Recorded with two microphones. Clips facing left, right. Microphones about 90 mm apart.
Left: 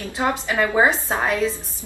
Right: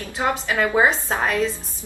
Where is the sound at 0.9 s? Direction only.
15° left (ahead or behind).